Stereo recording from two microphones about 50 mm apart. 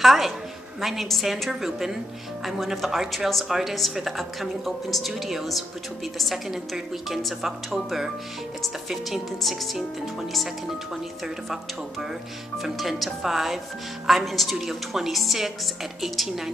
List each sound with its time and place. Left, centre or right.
0.0 s speech: centre
12.6 s speech: centre